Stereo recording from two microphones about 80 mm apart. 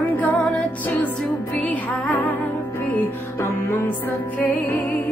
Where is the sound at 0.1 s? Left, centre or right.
Left.